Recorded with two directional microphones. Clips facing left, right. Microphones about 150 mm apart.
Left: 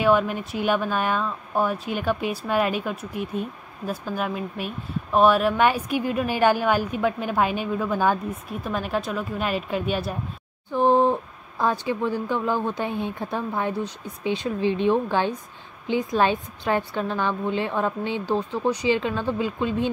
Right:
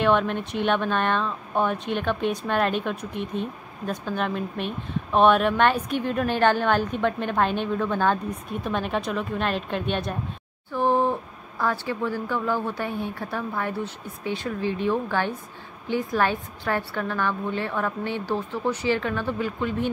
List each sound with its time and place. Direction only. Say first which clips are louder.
0.0 s speech: left 1 dB; 5° left (ahead or behind)
10.7 s a woman's voice: left 3 dB; 20° left (ahead or behind)